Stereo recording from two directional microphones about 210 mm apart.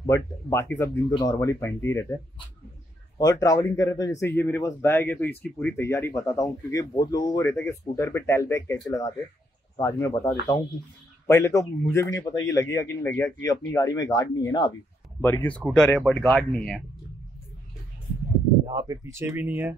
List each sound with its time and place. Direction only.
0.0 s speech: 15° left (ahead or behind)
15.2 s speech: 10° left (ahead or behind)
18.7 s speech: 15° right (ahead or behind)